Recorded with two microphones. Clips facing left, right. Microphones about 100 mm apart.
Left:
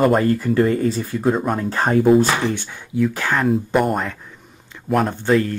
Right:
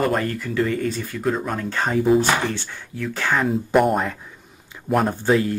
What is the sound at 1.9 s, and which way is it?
Speech, 55° left (ahead or behind).